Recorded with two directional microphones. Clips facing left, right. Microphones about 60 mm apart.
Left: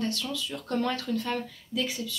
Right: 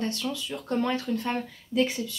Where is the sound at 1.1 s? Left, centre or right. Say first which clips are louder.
Right 1 dB; right.